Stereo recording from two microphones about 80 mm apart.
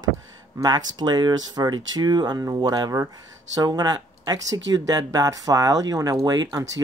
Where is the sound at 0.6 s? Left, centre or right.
Right.